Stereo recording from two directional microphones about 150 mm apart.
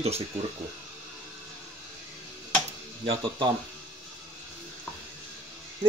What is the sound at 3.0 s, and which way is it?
Speech, 40° right (ahead or behind).